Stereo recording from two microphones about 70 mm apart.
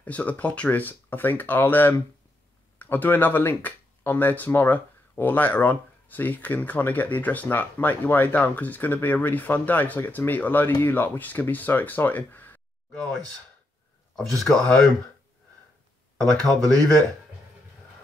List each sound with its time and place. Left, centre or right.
0.0 s speech: left
14.1 s speech: centre
16.2 s speech: centre